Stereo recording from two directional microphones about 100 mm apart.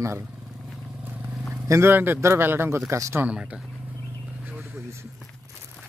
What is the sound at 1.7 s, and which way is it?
Speech, 25° right (ahead or behind).